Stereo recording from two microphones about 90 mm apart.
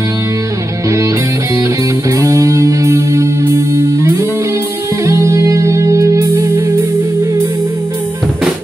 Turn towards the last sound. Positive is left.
turn(degrees=-30)  # may be behind; listen again after turning